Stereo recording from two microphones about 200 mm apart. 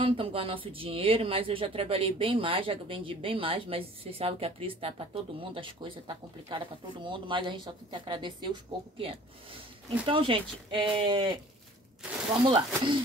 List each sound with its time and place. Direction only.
0.0 s speech: 25° right (ahead or behind)
12.4 s speech: 25° right (ahead or behind)